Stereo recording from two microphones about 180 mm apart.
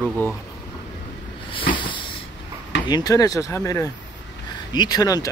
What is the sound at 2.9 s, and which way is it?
Speech, 20° left (ahead or behind).